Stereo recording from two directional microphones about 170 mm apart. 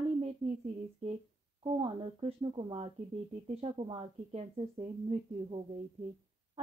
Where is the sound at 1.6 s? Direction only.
30° right (ahead or behind).